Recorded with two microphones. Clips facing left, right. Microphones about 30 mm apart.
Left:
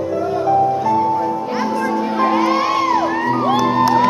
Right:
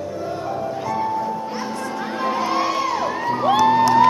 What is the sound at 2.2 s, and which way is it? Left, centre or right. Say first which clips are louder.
Music: left 5 dB; centre.